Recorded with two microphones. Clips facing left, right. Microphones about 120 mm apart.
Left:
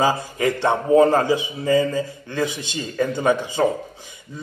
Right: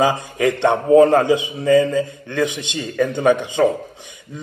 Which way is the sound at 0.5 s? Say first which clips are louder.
Right 3 dB; 20° right (ahead or behind).